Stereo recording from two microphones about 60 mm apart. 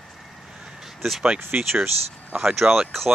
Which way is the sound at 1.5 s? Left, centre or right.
Right.